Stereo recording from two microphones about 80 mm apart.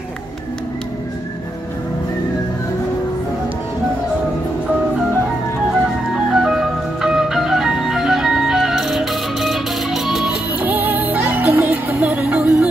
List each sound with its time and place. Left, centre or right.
5.7 s music: centre
10.6 s music: right